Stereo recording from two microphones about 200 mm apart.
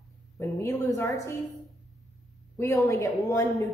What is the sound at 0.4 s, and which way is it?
Speech, 15° left (ahead or behind).